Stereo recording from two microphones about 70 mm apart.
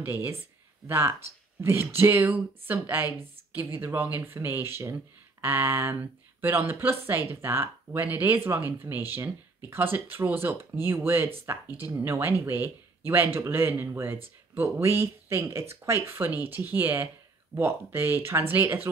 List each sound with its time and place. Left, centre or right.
0.0 s speech: right
16.3 s speech: right